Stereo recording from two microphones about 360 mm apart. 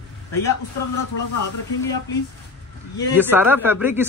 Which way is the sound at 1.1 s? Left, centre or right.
Left.